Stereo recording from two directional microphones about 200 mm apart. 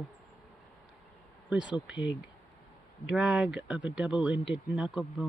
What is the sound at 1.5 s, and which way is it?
Speech, 5° right (ahead or behind).